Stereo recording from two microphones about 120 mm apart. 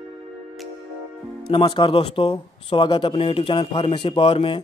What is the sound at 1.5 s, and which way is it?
Speech, 45° left (ahead or behind).